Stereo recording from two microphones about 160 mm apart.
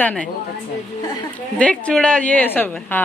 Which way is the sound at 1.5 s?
10° left (ahead or behind).